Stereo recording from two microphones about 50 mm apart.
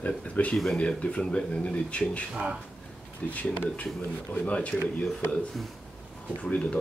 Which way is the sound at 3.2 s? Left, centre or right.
Left.